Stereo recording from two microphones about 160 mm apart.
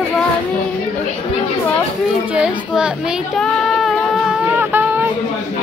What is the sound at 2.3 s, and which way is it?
Speech, 10° right (ahead or behind).